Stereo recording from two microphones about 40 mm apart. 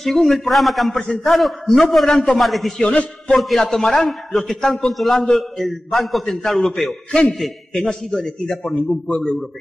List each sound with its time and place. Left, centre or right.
0.0 s a man's voice: centre
8.7 s a man's voice: centre